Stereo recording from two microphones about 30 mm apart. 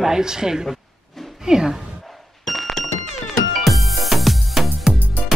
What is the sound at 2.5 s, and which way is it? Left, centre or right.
Thunk, centre.